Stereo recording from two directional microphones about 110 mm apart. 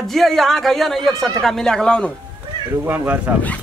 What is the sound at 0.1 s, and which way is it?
Speech, centre (ahead or behind).